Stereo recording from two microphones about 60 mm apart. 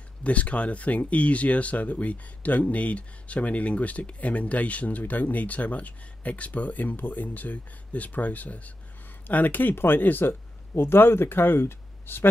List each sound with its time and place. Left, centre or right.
0.2 s speech: left
10.7 s speech: left